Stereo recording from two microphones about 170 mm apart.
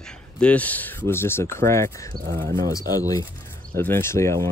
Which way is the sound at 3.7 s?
15° left (ahead or behind).